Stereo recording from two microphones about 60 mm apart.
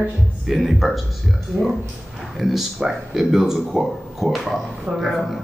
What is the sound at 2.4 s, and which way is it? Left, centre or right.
Speech, centre.